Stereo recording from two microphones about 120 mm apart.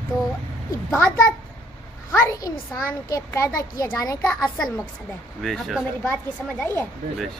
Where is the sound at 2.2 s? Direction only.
30° left (ahead or behind).